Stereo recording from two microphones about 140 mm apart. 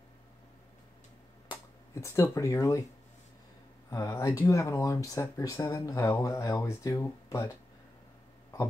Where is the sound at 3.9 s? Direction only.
25° left (ahead or behind).